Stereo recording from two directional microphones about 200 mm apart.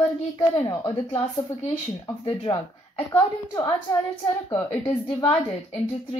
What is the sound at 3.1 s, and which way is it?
Speech, 15° left (ahead or behind).